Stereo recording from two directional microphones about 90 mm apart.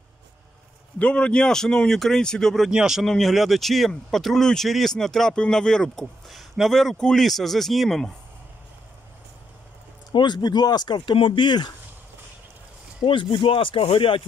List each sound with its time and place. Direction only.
0.9 s speech: 10° left (ahead or behind)
2.7 s a man's voice: 5° right (ahead or behind)
10.1 s speech: 55° left (ahead or behind)
13.0 s speech: 70° left (ahead or behind)